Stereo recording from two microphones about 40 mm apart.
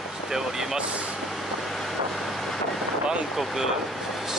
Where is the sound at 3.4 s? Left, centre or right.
Centre.